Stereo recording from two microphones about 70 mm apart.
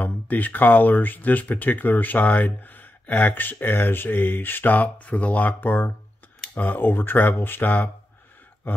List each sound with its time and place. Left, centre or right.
0.0 s speech: left